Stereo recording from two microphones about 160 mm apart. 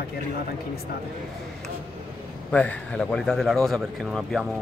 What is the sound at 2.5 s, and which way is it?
A man's voice, 10° left (ahead or behind).